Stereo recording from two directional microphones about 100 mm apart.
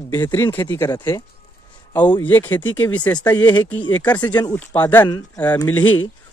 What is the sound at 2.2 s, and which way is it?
Speech, 20° left (ahead or behind).